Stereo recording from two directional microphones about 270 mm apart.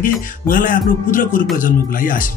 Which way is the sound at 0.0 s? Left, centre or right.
Left.